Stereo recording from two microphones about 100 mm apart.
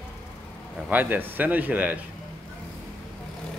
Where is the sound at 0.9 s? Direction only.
20° right (ahead or behind).